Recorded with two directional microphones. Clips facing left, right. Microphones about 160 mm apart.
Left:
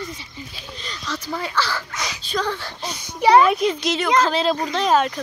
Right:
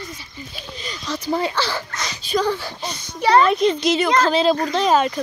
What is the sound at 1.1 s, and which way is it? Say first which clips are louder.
Speech: right 4 dB; 25° right (ahead or behind).